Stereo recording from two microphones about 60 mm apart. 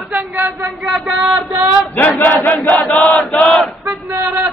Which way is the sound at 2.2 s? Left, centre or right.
Left.